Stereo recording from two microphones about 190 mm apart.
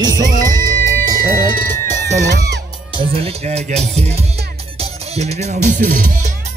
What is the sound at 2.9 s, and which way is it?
Music, 30° right (ahead or behind).